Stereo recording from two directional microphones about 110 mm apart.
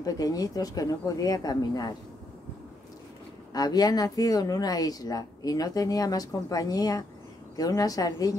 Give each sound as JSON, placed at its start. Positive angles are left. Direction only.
{"t": 0.0, "sound": "speech", "side_deg": 35}
{"t": 3.5, "sound": "speech", "side_deg": 35}